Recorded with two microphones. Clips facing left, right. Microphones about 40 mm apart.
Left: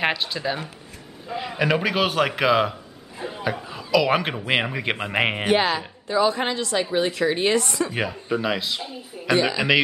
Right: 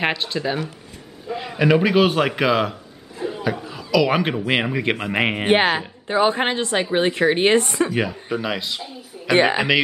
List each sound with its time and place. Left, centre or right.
0.0 s a man's voice: centre
3.3 s chuckle: centre
4.5 s a man's voice: centre
5.5 s speech: right
7.9 s a man's voice: centre
9.3 s speech: right